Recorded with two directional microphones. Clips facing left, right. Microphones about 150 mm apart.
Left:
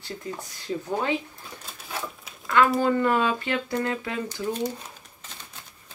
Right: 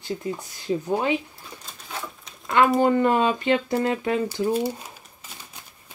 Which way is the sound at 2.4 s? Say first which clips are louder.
Right 2 dB; 20° right (ahead or behind).